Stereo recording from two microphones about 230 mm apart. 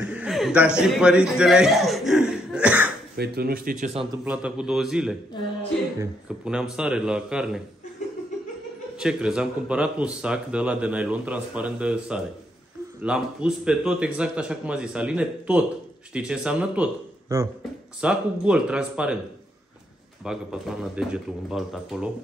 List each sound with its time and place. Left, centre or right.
0.0 s a sound: centre
3.2 s speech: right
4.2 s a man's voice: centre
8.9 s a man's voice: centre
20.2 s a man's voice: centre